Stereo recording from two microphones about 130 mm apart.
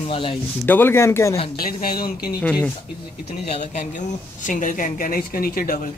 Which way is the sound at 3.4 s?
55° left (ahead or behind).